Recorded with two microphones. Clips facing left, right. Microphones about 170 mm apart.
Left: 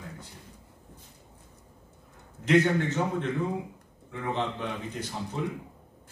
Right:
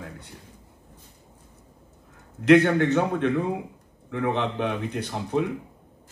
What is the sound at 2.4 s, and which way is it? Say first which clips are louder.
Speech: right 6 dB; 65° right (ahead or behind).